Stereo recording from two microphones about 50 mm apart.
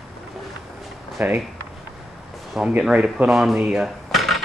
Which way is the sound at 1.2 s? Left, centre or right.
Right.